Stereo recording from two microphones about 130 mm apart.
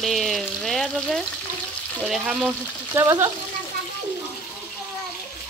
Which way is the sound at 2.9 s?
25° right (ahead or behind).